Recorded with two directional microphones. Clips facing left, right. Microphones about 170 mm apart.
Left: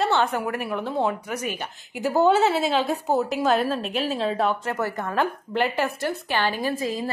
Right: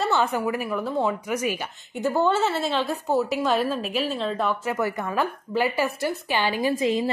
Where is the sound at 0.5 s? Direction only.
Centre (ahead or behind).